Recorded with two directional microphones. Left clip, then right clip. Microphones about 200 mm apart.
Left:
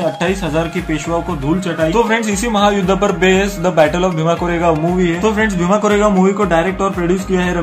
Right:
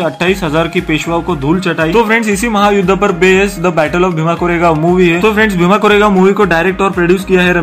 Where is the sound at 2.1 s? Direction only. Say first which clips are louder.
Right 4 dB; 15° right (ahead or behind).